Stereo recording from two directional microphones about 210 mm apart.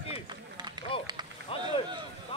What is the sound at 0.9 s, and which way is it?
Run, 25° left (ahead or behind).